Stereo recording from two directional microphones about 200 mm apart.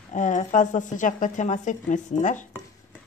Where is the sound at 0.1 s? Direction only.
40° left (ahead or behind).